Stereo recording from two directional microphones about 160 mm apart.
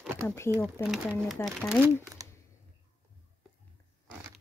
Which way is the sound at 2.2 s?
20° right (ahead or behind).